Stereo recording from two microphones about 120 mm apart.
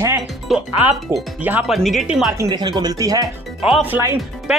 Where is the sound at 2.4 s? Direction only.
35° right (ahead or behind).